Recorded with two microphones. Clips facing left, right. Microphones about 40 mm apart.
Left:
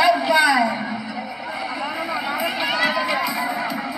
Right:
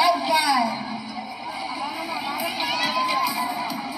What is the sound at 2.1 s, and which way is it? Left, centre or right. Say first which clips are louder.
Run: left 5 dB; left.